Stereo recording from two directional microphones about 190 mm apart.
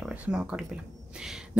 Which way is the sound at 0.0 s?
5° right (ahead or behind).